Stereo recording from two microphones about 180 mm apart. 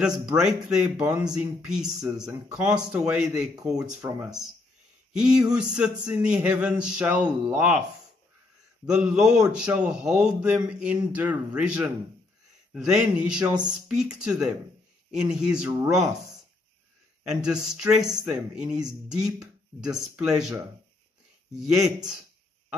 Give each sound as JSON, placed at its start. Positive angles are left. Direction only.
{"t": 0.0, "sound": "speech", "side_deg": -5}
{"t": 3.5, "sound": "speech", "side_deg": -20}
{"t": 3.8, "sound": "speech", "side_deg": -5}
{"t": 8.8, "sound": "speech", "side_deg": -5}
{"t": 17.3, "sound": "speech", "side_deg": -5}
{"t": 21.5, "sound": "speech", "side_deg": 0}